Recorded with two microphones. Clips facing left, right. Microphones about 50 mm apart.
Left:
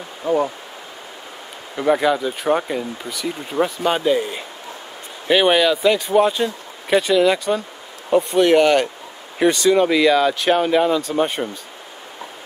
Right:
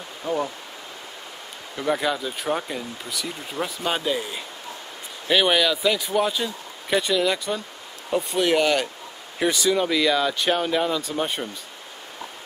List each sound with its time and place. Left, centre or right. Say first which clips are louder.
0.2 s speech: left 7 dB; centre
1.8 s speech: left 7 dB; centre
8.1 s speech: left 7 dB; centre